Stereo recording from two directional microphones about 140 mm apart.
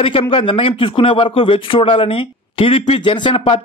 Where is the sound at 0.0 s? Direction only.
40° left (ahead or behind).